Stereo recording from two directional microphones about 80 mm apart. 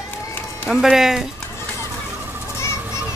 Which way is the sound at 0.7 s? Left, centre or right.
Centre.